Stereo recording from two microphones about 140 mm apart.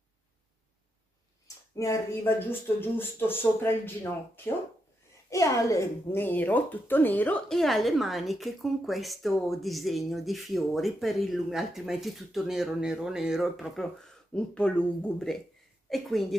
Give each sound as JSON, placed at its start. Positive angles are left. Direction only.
{"t": 1.8, "sound": "speech", "side_deg": 20}
{"t": 5.3, "sound": "a woman's voice", "side_deg": 20}